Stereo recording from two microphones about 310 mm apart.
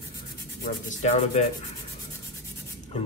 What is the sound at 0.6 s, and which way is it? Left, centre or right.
Speech, left.